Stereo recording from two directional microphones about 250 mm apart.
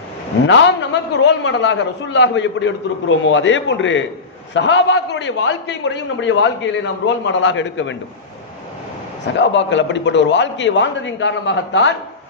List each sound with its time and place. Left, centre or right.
0.5 s a man's voice: left
9.2 s a man's voice: left